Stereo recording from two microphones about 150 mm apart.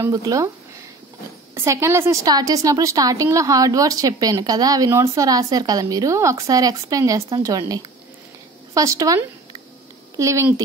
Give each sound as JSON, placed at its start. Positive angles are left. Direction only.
{"t": 0.0, "sound": "a woman's voice", "side_deg": -25}
{"t": 1.5, "sound": "a woman's voice", "side_deg": -15}